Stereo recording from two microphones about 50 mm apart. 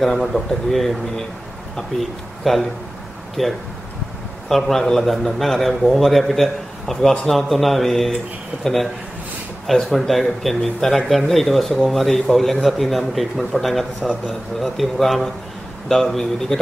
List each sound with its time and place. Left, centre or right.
0.0 s a man's voice: centre
9.7 s a man's voice: centre